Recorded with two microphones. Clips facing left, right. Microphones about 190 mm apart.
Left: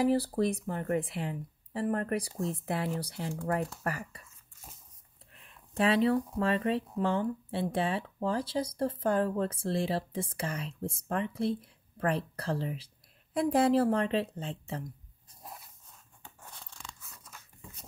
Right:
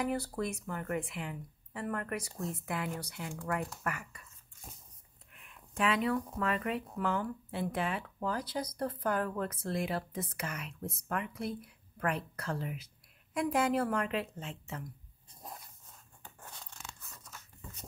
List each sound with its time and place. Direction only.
0.0 s speech: 30° left (ahead or behind)
5.3 s speech: 35° left (ahead or behind)
15.4 s a sound: 5° left (ahead or behind)
17.1 s biting: 5° left (ahead or behind)